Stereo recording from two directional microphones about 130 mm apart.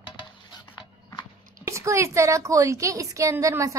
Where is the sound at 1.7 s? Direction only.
20° right (ahead or behind).